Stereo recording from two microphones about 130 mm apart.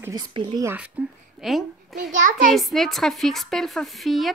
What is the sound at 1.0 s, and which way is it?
A woman's voice, 10° right (ahead or behind).